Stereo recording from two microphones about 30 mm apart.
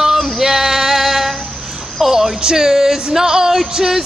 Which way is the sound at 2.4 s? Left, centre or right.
Centre.